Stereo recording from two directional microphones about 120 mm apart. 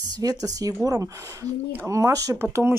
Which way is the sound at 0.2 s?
30° right (ahead or behind).